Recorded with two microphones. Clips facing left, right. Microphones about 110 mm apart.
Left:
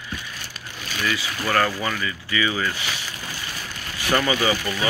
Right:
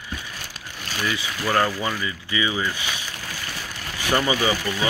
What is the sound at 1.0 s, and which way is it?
Speech, 20° right (ahead or behind).